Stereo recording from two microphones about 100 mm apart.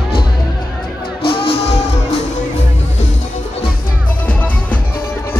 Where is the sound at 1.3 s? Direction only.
65° left (ahead or behind).